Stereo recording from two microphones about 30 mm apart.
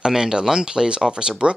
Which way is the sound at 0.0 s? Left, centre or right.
Right.